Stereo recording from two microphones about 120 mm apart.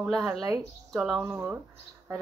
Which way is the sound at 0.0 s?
5° right (ahead or behind).